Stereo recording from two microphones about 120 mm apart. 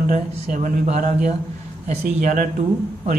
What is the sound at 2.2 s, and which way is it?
Speech, 90° right.